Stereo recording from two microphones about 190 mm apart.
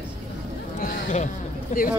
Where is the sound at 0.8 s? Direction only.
45° left (ahead or behind).